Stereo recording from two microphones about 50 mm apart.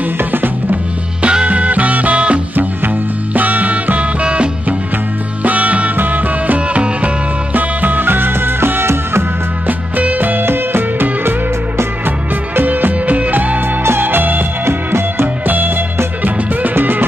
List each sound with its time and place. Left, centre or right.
0.0 s music: right
1.2 s music: right
2.5 s music: right
9.7 s music: right
10.4 s music: right
12.5 s music: right
14.6 s music: right
15.4 s music: right